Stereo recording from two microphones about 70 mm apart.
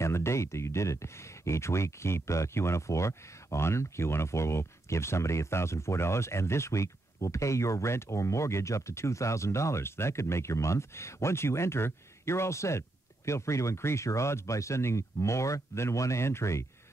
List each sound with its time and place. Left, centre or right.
0.0 s speech: left